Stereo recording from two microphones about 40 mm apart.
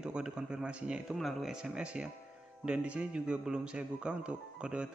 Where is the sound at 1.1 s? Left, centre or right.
Centre.